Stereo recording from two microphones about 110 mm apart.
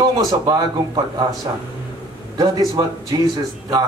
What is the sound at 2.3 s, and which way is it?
Speech, 35° right (ahead or behind).